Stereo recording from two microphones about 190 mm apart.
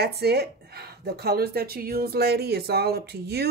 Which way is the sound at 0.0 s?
55° right (ahead or behind).